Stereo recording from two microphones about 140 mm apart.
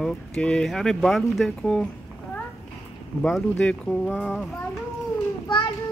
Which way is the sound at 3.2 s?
5° left (ahead or behind).